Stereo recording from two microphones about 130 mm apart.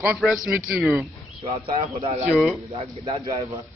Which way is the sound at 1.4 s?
40° right (ahead or behind).